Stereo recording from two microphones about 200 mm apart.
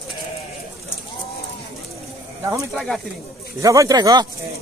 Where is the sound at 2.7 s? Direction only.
Centre (ahead or behind).